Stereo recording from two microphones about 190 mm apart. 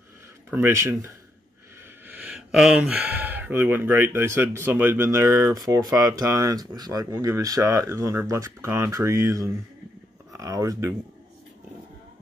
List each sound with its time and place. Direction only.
0.5 s speech: 10° right (ahead or behind)